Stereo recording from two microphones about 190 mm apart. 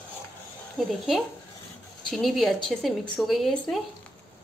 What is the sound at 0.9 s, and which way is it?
A woman's voice, centre (ahead or behind).